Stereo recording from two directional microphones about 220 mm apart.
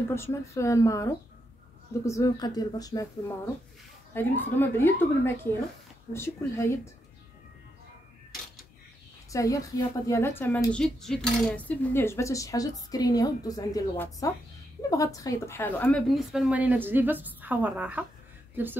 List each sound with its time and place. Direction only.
0.1 s speech: 10° left (ahead or behind)
9.3 s a woman's voice: 15° left (ahead or behind); by 18.0 s 5° right (ahead or behind)